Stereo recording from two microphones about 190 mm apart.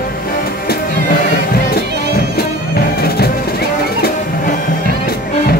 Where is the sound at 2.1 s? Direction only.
50° left (ahead or behind).